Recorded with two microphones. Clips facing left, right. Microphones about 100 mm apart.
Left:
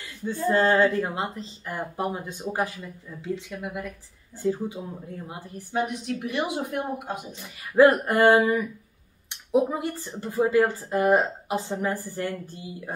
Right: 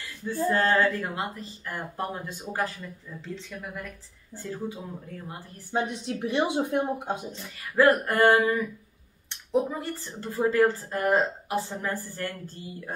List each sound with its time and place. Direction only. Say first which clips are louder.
0.5 s speech: left 3 dB; 20° left (ahead or behind)
5.7 s speech: left 1 dB; 25° right (ahead or behind)
7.3 s speech: left 6 dB; 20° left (ahead or behind)